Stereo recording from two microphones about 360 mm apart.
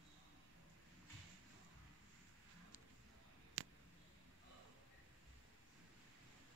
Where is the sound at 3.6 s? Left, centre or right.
Right.